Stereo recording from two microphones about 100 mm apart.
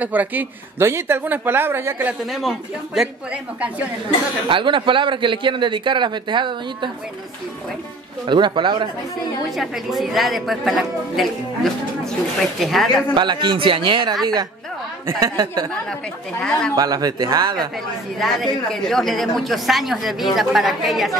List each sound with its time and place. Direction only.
0.0 s a woman's voice: 15° right (ahead or behind)
2.3 s a woman's voice: centre (ahead or behind)
4.5 s a man's voice: 55° right (ahead or behind)
8.3 s a man's voice: 50° right (ahead or behind)
9.6 s a woman's voice: centre (ahead or behind)
13.1 s a man's voice: 50° right (ahead or behind)
15.0 s speech: 35° right (ahead or behind)
16.3 s speech: 10° left (ahead or behind)
16.7 s speech: 40° right (ahead or behind)
18.2 s a woman's voice: 5° left (ahead or behind)